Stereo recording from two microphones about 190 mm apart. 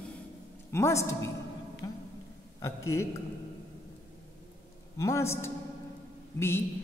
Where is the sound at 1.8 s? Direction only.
20° left (ahead or behind).